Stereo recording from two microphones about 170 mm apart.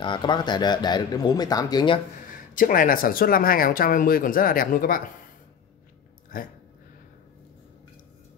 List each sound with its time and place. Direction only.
0.0 s speech: 25° left (ahead or behind)
2.5 s speech: 55° left (ahead or behind)
6.3 s speech: 55° left (ahead or behind)